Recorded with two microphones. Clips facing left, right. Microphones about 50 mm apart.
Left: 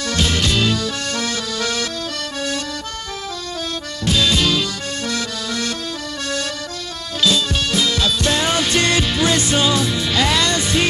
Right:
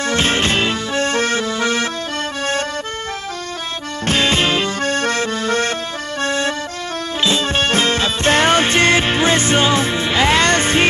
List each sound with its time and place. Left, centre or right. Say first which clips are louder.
0.1 s music: right 2 dB; right
4.0 s accordion: right 2 dB; right
7.2 s music: right 2 dB; right